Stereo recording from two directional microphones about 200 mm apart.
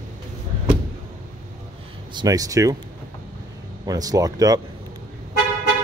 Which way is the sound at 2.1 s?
20° right (ahead or behind).